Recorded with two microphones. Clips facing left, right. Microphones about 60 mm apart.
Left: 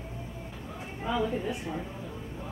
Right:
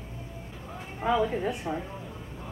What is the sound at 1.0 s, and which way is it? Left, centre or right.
Speech, right.